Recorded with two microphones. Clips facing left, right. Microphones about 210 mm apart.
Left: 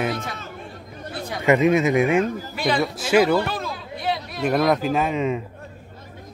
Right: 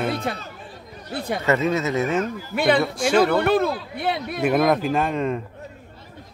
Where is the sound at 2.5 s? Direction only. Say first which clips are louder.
Right 4 dB; 60° right (ahead or behind).